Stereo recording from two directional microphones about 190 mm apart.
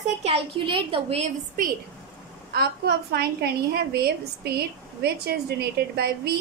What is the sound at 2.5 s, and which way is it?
A woman's voice, 60° right (ahead or behind).